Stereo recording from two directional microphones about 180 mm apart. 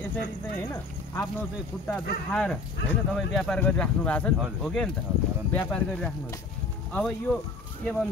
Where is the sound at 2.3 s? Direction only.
5° left (ahead or behind).